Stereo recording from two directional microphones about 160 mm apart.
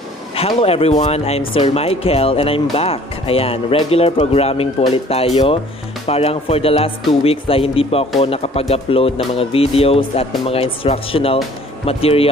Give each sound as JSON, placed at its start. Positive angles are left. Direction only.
{"t": 0.4, "sound": "speech", "side_deg": 40}